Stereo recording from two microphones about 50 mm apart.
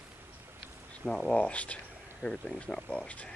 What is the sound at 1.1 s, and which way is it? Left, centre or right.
Speech, left.